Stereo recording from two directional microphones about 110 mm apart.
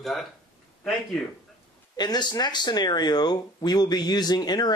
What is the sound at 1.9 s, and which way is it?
Speech, 40° left (ahead or behind).